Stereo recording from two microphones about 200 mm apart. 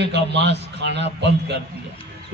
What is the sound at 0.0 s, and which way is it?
A man's voice, 60° right (ahead or behind).